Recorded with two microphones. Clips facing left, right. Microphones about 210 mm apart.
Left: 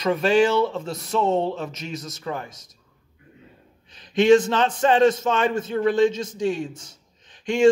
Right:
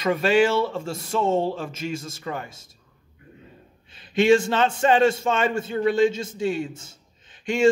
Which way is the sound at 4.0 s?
5° right (ahead or behind).